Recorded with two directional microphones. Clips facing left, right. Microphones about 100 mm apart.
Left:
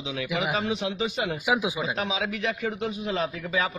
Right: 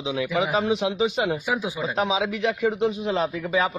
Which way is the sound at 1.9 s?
35° right (ahead or behind).